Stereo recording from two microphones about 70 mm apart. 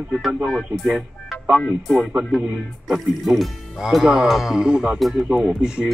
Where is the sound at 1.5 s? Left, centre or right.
Left.